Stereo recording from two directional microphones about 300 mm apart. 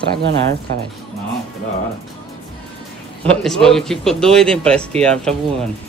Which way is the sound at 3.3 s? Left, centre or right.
Centre.